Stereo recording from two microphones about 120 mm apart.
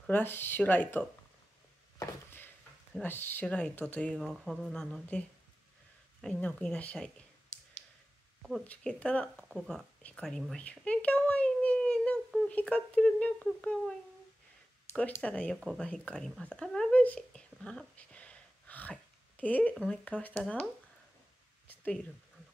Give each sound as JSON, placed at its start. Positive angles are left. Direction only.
{"t": 0.1, "sound": "speech", "side_deg": 15}
{"t": 2.9, "sound": "speech", "side_deg": 15}
{"t": 6.2, "sound": "speech", "side_deg": 10}
{"t": 8.4, "sound": "a sound", "side_deg": -5}
{"t": 8.6, "sound": "speech", "side_deg": 10}
{"t": 10.0, "sound": "a sound", "side_deg": 5}
{"t": 12.4, "sound": "speech", "side_deg": 10}
{"t": 19.7, "sound": "speech", "side_deg": 0}
{"t": 20.1, "sound": "speech", "side_deg": 15}